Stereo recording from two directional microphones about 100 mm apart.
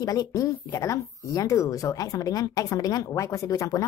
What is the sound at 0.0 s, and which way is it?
Speech, 35° left (ahead or behind).